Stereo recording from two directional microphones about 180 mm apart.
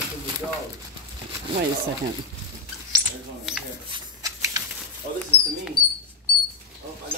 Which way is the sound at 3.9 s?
20° right (ahead or behind).